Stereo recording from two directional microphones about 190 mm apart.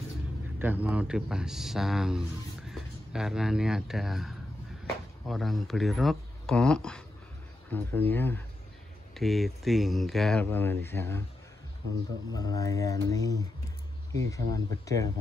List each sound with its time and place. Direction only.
0.6 s speech: 10° right (ahead or behind); by 11.2 s 10° left (ahead or behind)
12.3 s speech: 20° left (ahead or behind)